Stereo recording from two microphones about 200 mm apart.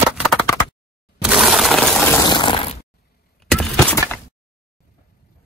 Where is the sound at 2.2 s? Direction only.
25° left (ahead or behind).